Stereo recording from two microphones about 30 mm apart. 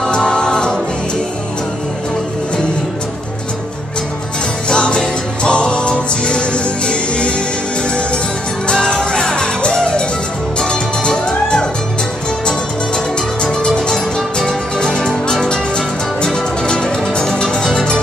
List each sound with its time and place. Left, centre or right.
0.1 s music: left
4.6 s music: left
8.6 s music: left
10.6 s music: centre